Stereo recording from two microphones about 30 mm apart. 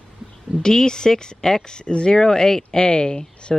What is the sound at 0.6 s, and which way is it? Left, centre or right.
Speech, left.